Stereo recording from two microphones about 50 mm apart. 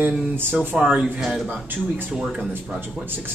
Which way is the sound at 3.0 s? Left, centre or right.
Right.